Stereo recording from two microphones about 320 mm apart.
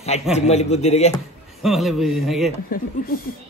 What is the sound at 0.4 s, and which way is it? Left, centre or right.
Speech, left.